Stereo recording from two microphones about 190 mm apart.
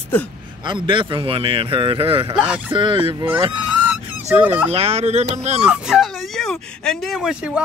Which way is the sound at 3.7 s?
10° right (ahead or behind).